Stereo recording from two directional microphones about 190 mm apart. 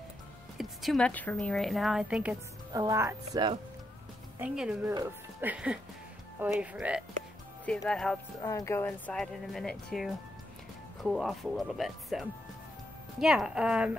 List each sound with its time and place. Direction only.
0.6 s speech: centre (ahead or behind)
2.7 s speech: 15° right (ahead or behind)
7.6 s speech: 5° left (ahead or behind)
8.4 s speech: 15° left (ahead or behind); by 13.9 s 5° right (ahead or behind)